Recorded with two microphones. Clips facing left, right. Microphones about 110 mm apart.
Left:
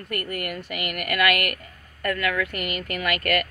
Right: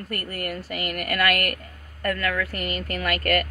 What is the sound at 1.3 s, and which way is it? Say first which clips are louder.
Speech: even; 40° right (ahead or behind).